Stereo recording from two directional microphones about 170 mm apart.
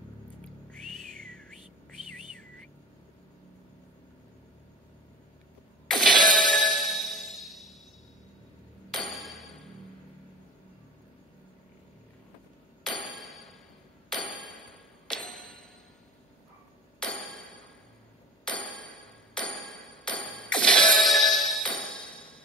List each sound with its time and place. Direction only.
0.7 s music: 5° left (ahead or behind)
5.9 s music: centre (ahead or behind)
8.9 s music: centre (ahead or behind)
12.8 s a sound: centre (ahead or behind)
17.0 s a sound: 5° left (ahead or behind)
18.4 s music: 5° left (ahead or behind)